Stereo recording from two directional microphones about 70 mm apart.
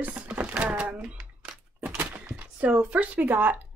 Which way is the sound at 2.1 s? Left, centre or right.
Right.